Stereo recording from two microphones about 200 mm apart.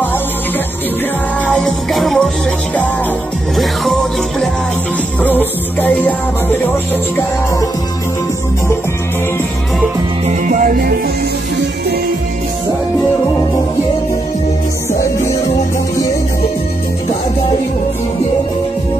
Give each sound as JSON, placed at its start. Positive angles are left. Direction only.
{"t": 1.5, "sound": "music", "side_deg": 0}
{"t": 5.2, "sound": "music", "side_deg": 10}
{"t": 10.2, "sound": "music", "side_deg": -40}